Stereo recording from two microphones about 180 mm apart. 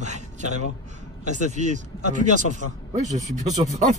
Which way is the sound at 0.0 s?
40° right (ahead or behind).